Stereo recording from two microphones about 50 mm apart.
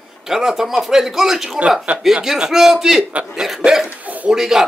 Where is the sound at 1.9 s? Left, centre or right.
Right.